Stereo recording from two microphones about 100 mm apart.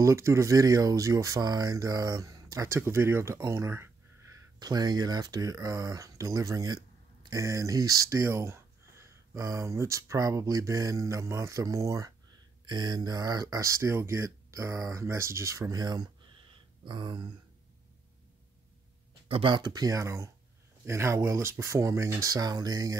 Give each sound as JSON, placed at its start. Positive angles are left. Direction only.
{"t": 0.0, "sound": "speech", "side_deg": -30}
{"t": 4.6, "sound": "speech", "side_deg": -45}
{"t": 12.6, "sound": "speech", "side_deg": -45}
{"t": 16.8, "sound": "a sound", "side_deg": -50}
{"t": 19.2, "sound": "a sound", "side_deg": -75}
{"t": 19.5, "sound": "speech", "side_deg": -45}